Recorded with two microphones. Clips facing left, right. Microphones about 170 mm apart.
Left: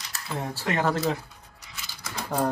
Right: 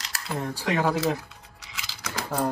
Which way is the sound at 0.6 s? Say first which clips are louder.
Right 1 dB; 10° right (ahead or behind).